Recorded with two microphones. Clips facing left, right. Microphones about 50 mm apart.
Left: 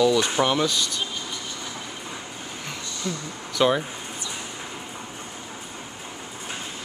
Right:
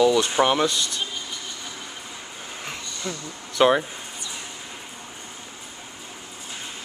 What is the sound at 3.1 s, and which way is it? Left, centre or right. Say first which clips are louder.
Speech: left 2 dB; centre.